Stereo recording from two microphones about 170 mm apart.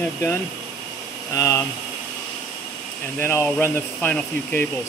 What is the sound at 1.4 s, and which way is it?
Speech, 15° left (ahead or behind).